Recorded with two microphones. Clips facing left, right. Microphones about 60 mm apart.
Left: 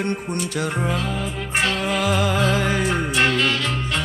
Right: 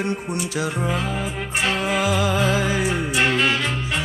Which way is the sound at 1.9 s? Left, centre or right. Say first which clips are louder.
Even; centre.